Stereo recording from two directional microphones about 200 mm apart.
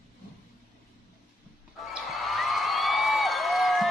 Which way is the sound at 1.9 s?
Centre (ahead or behind).